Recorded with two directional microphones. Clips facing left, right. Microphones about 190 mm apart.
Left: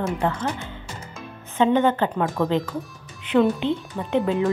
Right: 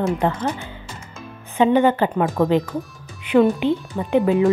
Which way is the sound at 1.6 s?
10° right (ahead or behind).